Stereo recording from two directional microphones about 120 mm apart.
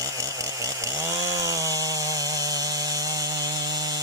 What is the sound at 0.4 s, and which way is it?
Chainsaw, 25° right (ahead or behind).